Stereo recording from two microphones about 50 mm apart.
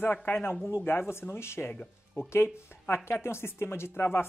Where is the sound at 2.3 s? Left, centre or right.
Left.